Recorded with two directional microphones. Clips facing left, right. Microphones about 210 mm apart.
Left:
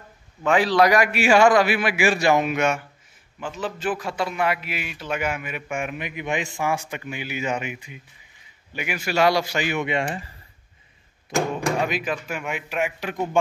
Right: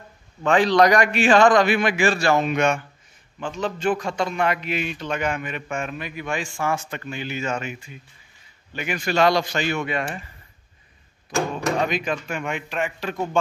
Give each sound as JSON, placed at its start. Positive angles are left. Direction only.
{"t": 0.4, "sound": "a man's voice", "side_deg": 5}
{"t": 11.2, "sound": "speech", "side_deg": 25}
{"t": 11.8, "sound": "a man's voice", "side_deg": 5}